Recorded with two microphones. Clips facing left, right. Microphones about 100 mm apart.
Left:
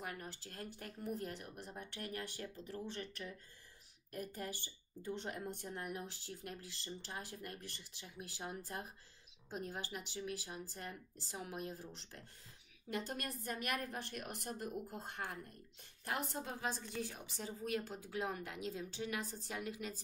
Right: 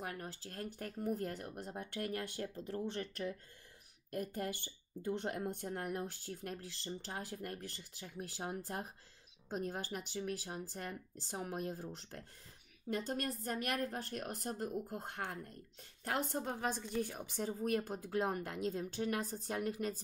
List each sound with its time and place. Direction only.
0.0 s a woman's voice: 40° right (ahead or behind)
15.0 s speech: 55° right (ahead or behind)